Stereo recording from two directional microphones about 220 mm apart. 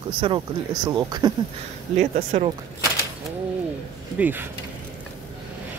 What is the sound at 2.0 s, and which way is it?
Speech, 30° right (ahead or behind).